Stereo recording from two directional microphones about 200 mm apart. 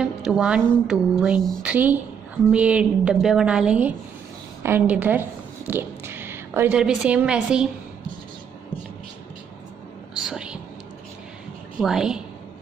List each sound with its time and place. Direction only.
0.0 s a woman's voice: centre (ahead or behind)
10.1 s whispering: 5° right (ahead or behind)
11.8 s a woman's voice: 5° right (ahead or behind)